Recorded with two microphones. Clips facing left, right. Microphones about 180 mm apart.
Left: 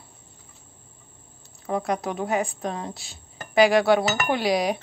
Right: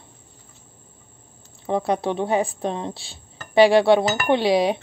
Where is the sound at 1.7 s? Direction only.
30° right (ahead or behind).